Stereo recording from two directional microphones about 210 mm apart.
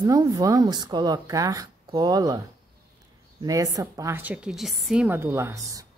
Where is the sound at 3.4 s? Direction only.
15° right (ahead or behind).